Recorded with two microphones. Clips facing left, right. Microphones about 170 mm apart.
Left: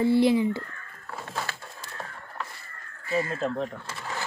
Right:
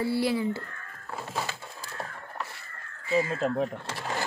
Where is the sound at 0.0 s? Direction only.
20° left (ahead or behind).